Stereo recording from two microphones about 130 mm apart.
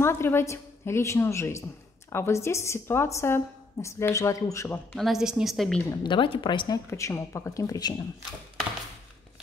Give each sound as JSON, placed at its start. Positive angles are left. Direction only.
{"t": 0.0, "sound": "a woman's voice", "side_deg": 20}
{"t": 4.9, "sound": "a woman's voice", "side_deg": 0}
{"t": 6.0, "sound": "speech", "side_deg": 40}
{"t": 6.9, "sound": "a woman's voice", "side_deg": 20}